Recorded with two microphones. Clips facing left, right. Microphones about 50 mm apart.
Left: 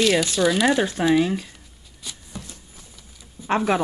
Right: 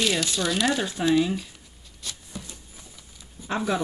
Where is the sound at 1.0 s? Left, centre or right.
Left.